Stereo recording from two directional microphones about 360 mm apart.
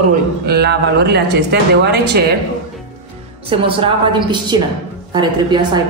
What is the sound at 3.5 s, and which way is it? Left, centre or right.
A woman's voice, centre.